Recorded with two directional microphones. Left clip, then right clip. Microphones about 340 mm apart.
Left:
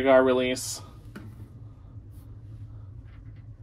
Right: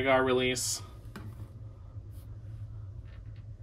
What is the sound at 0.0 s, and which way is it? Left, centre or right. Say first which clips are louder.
Speech: left 6 dB; centre.